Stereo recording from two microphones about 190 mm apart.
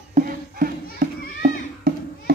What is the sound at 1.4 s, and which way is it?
Children playing, 55° right (ahead or behind).